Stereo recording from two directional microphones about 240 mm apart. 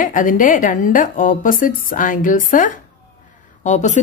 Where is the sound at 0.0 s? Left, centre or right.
Left.